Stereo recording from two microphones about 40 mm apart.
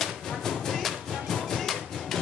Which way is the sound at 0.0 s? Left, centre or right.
Centre.